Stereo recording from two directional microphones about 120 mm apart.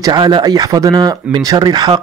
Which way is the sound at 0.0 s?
35° right (ahead or behind).